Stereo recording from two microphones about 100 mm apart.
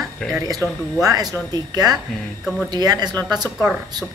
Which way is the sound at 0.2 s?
10° left (ahead or behind).